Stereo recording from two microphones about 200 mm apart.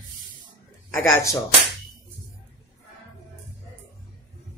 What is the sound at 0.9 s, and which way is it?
Speech, 15° left (ahead or behind).